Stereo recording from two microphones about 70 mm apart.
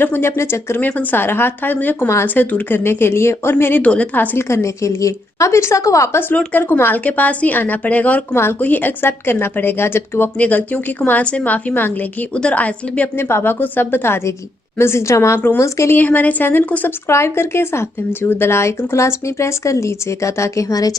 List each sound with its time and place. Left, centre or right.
0.0 s speech: left
0.8 s a woman's voice: left
1.2 s a woman's voice: left
3.8 s a woman's voice: centre
4.5 s speech: left
6.3 s a woman's voice: left
10.4 s a woman's voice: left
13.2 s speech: left
15.3 s speech: left
16.0 s a woman's voice: left
17.1 s speech: left